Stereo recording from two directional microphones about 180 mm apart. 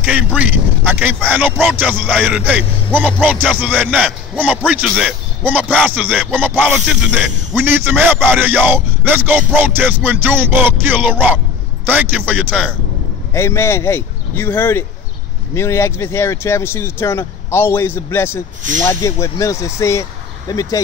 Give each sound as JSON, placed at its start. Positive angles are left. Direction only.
{"t": 0.0, "sound": "a man's voice", "side_deg": -5}
{"t": 13.3, "sound": "speech", "side_deg": 15}